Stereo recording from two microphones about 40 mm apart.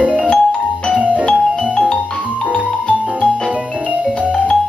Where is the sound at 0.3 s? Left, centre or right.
Left.